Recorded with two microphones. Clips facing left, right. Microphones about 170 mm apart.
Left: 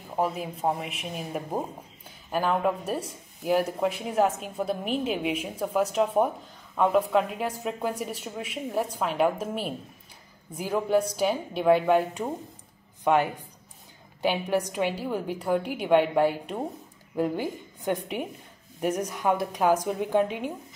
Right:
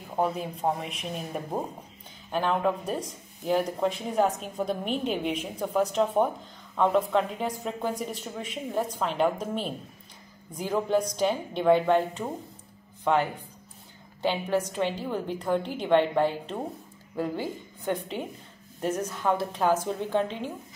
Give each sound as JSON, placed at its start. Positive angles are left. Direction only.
{"t": 0.1, "sound": "speech", "side_deg": 5}
{"t": 13.0, "sound": "a woman's voice", "side_deg": 15}